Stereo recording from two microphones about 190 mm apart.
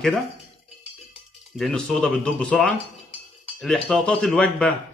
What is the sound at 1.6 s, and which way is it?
Speech, 5° left (ahead or behind).